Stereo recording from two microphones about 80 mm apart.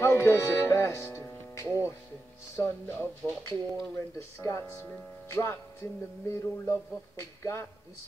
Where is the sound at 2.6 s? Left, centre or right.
Left.